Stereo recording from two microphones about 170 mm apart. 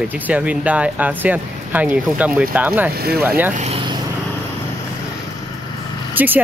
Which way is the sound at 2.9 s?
65° right (ahead or behind).